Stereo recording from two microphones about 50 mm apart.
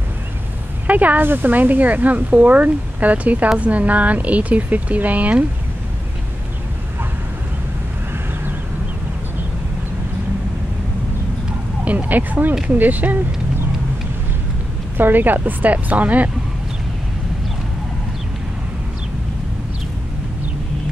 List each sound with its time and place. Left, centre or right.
0.8 s speech: right
11.8 s a sound: right
12.6 s speech: right
15.0 s speech: right